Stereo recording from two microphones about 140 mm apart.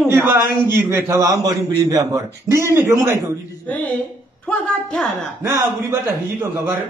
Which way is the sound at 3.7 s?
10° left (ahead or behind).